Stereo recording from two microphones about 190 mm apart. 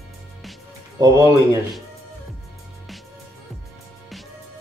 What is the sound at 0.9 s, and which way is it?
Speech, 20° right (ahead or behind).